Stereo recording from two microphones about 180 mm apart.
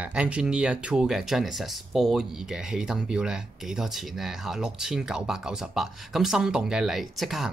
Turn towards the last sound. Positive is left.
turn(degrees=0)  # may be behind; listen again after turning